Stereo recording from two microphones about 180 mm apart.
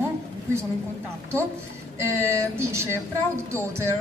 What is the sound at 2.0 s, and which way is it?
A woman's voice, 15° right (ahead or behind).